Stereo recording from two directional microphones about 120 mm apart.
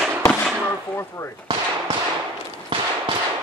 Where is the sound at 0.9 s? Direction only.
20° left (ahead or behind).